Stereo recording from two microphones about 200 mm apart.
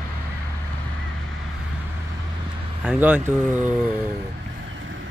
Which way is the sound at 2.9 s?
10° right (ahead or behind).